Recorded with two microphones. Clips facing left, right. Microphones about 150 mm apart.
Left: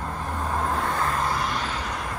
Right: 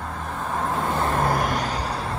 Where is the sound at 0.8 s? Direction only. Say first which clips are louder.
Right 2 dB; 25° right (ahead or behind).